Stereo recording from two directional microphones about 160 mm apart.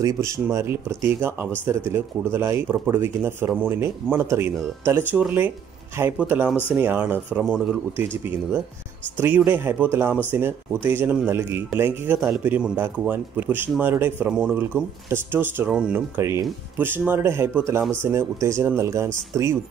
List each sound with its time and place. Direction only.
0.0 s a man's voice: 20° right (ahead or behind)
9.2 s a man's voice: 10° right (ahead or behind)
16.2 s a man's voice: 20° right (ahead or behind)